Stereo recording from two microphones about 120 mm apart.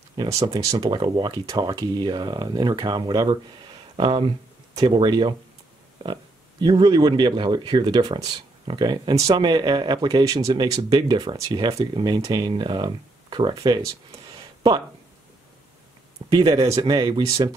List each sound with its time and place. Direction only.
0.3 s speech: 25° right (ahead or behind)
9.3 s speech: 40° right (ahead or behind)
14.1 s a sound: 40° right (ahead or behind)
16.3 s speech: 35° right (ahead or behind)